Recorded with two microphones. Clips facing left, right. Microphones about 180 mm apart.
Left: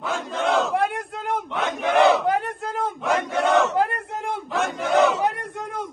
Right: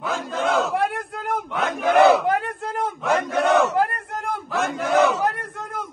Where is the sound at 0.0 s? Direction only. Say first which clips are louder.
Right 1 dB; centre (ahead or behind).